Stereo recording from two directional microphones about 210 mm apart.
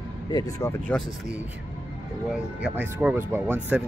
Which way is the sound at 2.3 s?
5° right (ahead or behind).